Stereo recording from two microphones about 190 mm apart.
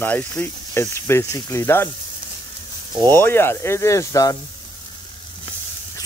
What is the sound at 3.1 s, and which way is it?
Speech, 10° left (ahead or behind).